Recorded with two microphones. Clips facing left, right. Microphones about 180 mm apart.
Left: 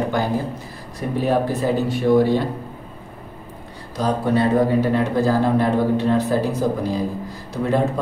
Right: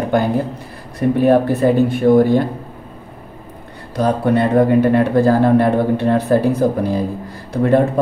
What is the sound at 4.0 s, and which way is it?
Speech, 60° right (ahead or behind).